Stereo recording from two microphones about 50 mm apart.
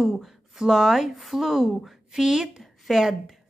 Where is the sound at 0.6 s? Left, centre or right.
Centre.